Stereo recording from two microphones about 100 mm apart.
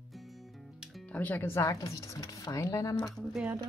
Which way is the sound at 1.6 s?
35° left (ahead or behind).